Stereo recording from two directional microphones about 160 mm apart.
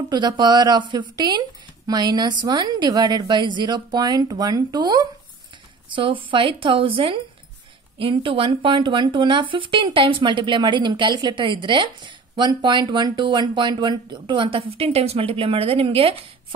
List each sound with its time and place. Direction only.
0.1 s a woman's voice: 25° right (ahead or behind)